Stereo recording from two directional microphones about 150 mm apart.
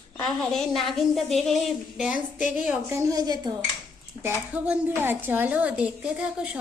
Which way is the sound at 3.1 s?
25° right (ahead or behind).